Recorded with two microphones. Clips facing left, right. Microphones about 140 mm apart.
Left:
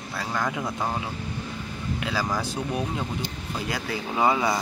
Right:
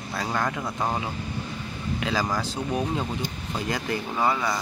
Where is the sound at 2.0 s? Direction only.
5° left (ahead or behind).